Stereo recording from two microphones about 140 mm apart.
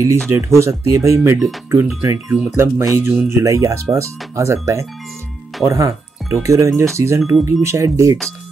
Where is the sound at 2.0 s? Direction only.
20° right (ahead or behind).